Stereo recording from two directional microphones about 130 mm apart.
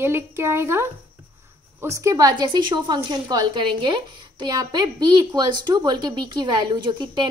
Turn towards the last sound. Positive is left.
turn(degrees=-35)  # may be behind; listen again after turning